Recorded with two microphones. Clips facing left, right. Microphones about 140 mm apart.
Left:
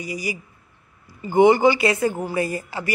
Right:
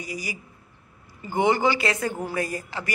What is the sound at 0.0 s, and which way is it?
Speech, 10° left (ahead or behind).